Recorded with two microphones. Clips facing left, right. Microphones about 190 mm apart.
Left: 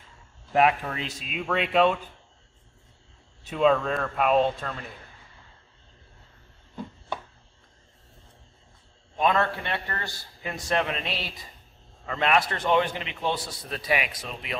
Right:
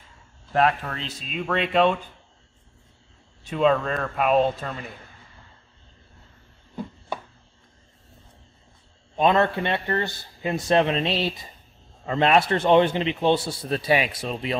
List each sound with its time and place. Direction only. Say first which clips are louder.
0.5 s speech: even; 10° left (ahead or behind)
3.4 s speech: right 1 dB; centre (ahead or behind)
9.1 s a man's voice: right 4 dB; 25° right (ahead or behind)